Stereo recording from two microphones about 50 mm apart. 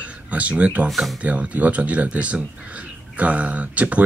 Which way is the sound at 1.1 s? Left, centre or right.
Right.